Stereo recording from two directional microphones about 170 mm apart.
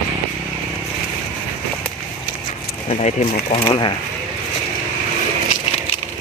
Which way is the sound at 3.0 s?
40° left (ahead or behind).